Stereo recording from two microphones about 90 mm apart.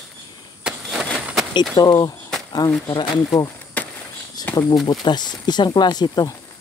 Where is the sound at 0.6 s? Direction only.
10° right (ahead or behind).